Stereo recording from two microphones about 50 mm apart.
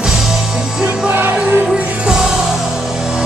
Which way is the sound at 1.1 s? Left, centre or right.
Right.